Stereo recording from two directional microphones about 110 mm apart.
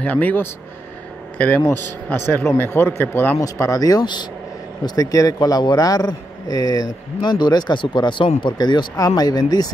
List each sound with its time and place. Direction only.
0.0 s speech: 15° left (ahead or behind)
1.7 s a man's voice: 20° left (ahead or behind); by 9.7 s 35° left (ahead or behind)